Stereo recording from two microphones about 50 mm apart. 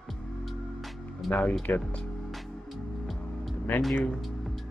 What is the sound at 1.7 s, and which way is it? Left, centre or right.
Speech, left.